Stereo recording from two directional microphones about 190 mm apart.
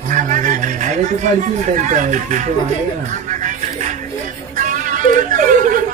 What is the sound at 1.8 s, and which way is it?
Speech, 40° right (ahead or behind).